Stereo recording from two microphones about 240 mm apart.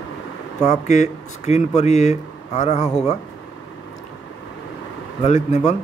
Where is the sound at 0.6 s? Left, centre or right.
Left.